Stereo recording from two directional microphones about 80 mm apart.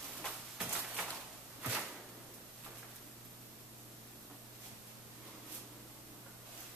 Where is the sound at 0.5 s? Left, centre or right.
Centre.